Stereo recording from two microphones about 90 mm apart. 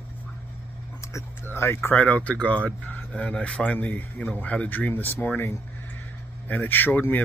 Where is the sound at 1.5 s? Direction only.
25° left (ahead or behind).